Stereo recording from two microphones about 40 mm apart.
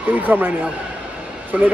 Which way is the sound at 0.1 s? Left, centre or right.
Right.